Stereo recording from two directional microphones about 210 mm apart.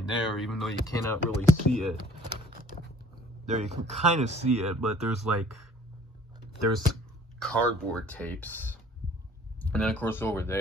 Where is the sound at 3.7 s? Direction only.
30° right (ahead or behind).